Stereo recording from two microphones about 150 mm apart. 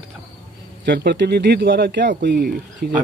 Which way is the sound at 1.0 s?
90° right.